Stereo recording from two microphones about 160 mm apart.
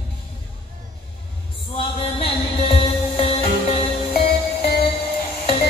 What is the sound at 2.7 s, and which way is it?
Music, 35° left (ahead or behind).